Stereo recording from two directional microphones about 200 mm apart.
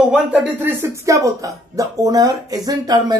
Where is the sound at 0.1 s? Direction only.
10° right (ahead or behind).